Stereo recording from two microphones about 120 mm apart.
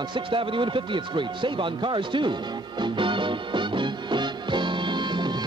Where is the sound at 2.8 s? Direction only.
45° right (ahead or behind).